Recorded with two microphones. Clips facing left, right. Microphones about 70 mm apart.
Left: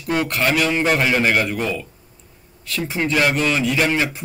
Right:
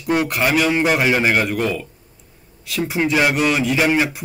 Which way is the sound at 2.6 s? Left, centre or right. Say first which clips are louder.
Right 3 dB; centre.